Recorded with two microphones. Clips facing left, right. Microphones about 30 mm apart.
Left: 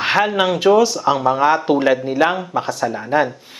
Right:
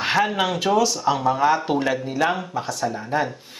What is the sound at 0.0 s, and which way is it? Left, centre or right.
A woman's voice, centre.